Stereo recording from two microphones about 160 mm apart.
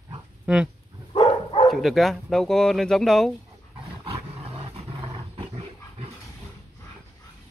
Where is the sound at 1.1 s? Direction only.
35° left (ahead or behind).